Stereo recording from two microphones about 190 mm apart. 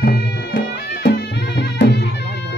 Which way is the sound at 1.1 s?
65° left (ahead or behind).